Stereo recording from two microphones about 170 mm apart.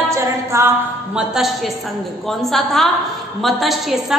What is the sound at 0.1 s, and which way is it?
A capella, 15° right (ahead or behind).